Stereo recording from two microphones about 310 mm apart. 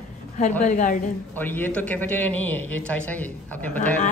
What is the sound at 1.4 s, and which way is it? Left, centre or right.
A man's voice, centre.